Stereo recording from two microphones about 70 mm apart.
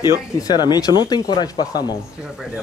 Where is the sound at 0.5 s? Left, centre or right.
Left.